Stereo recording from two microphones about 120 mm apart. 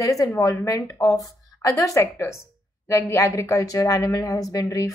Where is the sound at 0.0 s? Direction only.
30° left (ahead or behind).